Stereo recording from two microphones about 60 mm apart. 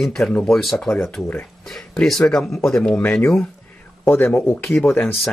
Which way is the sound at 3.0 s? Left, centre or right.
Left.